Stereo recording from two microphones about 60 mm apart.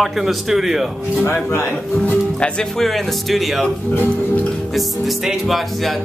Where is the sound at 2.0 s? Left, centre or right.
Left.